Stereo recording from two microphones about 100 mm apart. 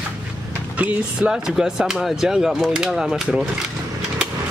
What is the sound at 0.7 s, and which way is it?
Speech, 10° right (ahead or behind).